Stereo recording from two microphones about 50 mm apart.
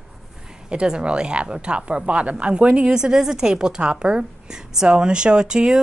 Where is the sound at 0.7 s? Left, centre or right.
Centre.